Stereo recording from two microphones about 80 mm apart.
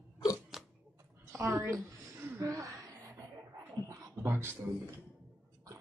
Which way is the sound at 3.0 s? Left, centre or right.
Right.